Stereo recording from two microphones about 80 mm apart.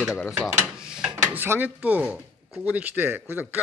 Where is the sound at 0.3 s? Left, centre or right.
Centre.